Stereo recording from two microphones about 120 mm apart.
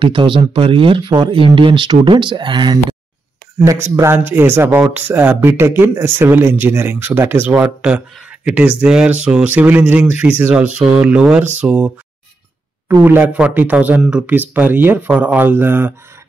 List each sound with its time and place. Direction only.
0.0 s speech: 45° right (ahead or behind)
3.6 s speech: 25° right (ahead or behind); by 11.9 s 5° right (ahead or behind)
13.0 s speech: 15° right (ahead or behind)